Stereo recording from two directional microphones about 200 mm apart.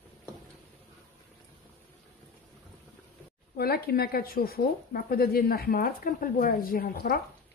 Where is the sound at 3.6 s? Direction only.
50° left (ahead or behind).